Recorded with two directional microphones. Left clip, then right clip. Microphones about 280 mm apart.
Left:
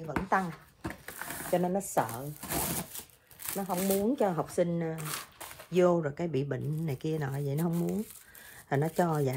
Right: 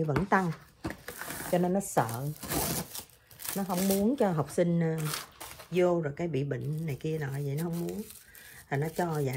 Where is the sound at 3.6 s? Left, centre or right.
Right.